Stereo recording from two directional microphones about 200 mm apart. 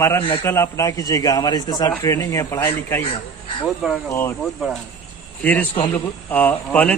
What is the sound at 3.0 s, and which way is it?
Speech, 25° left (ahead or behind).